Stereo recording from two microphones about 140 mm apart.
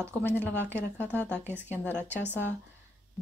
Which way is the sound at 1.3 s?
15° right (ahead or behind).